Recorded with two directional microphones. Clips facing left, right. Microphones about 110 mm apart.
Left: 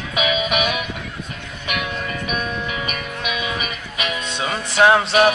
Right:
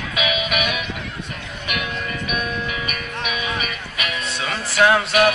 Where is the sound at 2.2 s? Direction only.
35° left (ahead or behind).